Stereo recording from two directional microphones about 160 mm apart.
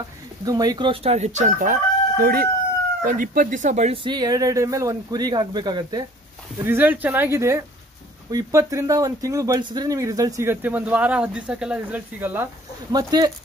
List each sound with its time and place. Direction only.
0.5 s chicken: 25° right (ahead or behind); by 4.0 s 45° right (ahead or behind)
4.0 s speech: 25° right (ahead or behind)
6.6 s speech: 15° right (ahead or behind)
12.9 s speech: 25° right (ahead or behind)